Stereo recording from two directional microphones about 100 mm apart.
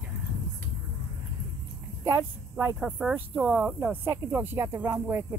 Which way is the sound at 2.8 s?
5° right (ahead or behind).